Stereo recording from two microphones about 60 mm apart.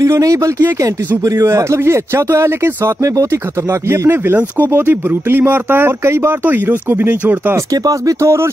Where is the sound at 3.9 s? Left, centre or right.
Right.